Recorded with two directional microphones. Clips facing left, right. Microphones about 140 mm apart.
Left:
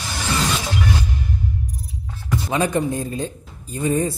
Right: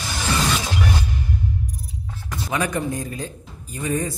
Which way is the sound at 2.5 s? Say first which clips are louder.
Left 3 dB; 25° left (ahead or behind).